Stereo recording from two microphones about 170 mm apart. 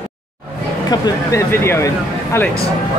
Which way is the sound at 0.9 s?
20° left (ahead or behind).